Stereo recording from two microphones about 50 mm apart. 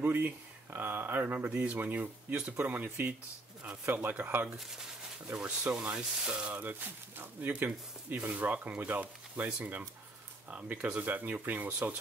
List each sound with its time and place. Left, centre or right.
0.0 s speech: right
5.3 s speech: right
6.5 s speech: right